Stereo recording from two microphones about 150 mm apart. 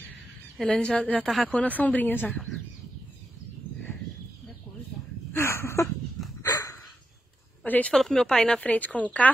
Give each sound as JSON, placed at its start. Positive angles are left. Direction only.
{"t": 0.6, "sound": "a woman's voice", "side_deg": 5}
{"t": 5.3, "sound": "a sound", "side_deg": 20}
{"t": 6.4, "sound": "dog", "side_deg": 25}
{"t": 7.6, "sound": "a woman's voice", "side_deg": 10}